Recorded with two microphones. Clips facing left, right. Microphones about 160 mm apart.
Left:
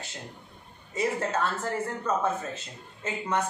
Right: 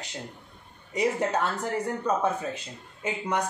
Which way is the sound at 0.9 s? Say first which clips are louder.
Right 2 dB; 15° right (ahead or behind).